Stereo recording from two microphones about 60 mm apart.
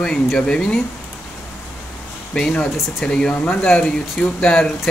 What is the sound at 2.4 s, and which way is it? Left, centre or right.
Speech, centre.